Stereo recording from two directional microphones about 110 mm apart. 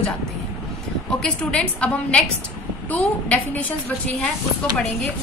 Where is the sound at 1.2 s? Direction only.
10° left (ahead or behind).